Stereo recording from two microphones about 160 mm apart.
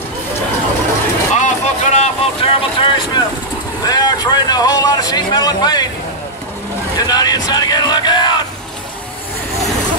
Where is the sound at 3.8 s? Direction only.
25° left (ahead or behind).